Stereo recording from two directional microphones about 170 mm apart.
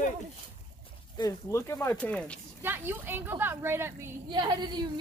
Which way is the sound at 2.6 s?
10° right (ahead or behind).